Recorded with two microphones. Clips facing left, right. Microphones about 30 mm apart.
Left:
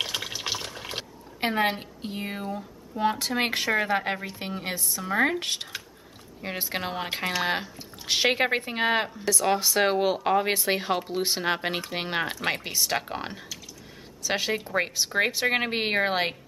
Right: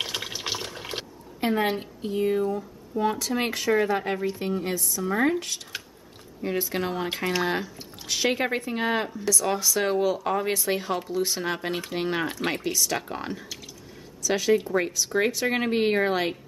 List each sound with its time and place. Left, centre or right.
0.0 s water: centre
1.5 s a woman's voice: left
5.4 s a woman's voice: left; by 13.5 s centre
14.2 s speech: left